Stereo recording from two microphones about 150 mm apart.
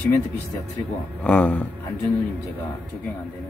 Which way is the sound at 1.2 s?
5° left (ahead or behind).